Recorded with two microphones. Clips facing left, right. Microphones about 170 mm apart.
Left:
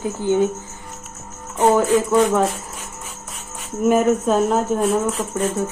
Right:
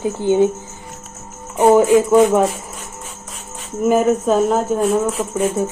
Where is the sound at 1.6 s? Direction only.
10° right (ahead or behind).